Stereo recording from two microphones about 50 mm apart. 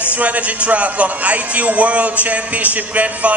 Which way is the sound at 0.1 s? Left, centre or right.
Right.